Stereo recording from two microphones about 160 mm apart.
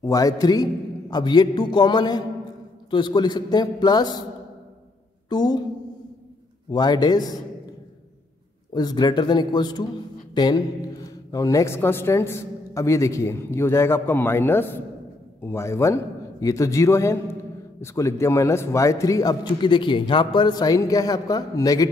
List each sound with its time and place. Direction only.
0.0 s a man's voice: 20° left (ahead or behind)
5.3 s a man's voice: 25° left (ahead or behind)
6.7 s a man's voice: 25° left (ahead or behind)
8.7 s a man's voice: 25° left (ahead or behind)